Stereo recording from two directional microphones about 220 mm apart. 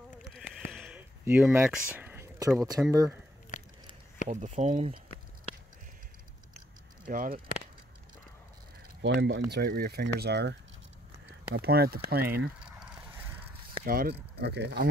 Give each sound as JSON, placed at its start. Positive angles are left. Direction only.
{"t": 0.3, "sound": "a sound", "side_deg": 0}
{"t": 4.3, "sound": "speech", "side_deg": -30}
{"t": 7.1, "sound": "speech", "side_deg": -40}
{"t": 9.0, "sound": "speech", "side_deg": -55}
{"t": 11.5, "sound": "speech", "side_deg": -45}
{"t": 13.8, "sound": "speech", "side_deg": -40}